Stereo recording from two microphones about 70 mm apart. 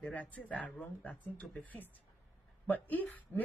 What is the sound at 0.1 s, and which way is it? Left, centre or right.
A man's voice, left.